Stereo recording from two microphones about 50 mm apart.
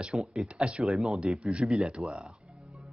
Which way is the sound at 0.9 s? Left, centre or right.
Centre.